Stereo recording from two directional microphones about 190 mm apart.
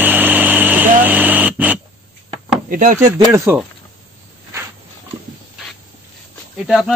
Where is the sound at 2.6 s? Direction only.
45° right (ahead or behind).